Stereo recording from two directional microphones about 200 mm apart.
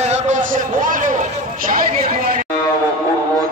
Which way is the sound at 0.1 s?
40° right (ahead or behind).